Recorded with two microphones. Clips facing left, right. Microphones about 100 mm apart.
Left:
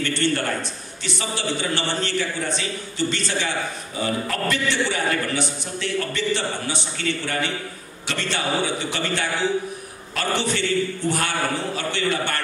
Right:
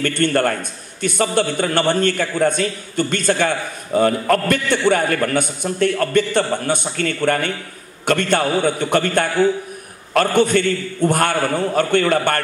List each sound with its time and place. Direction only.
0.0 s a man's voice: 50° right (ahead or behind)